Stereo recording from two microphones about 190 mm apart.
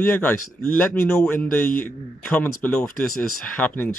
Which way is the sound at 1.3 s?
10° left (ahead or behind).